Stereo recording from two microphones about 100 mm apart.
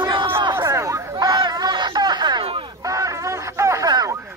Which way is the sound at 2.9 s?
35° right (ahead or behind).